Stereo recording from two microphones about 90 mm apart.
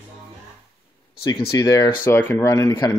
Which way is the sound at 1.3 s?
45° left (ahead or behind).